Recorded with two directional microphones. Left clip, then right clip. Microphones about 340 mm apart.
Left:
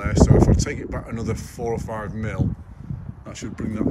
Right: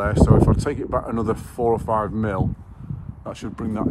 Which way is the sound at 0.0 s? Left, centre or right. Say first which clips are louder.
Right 1 dB; centre.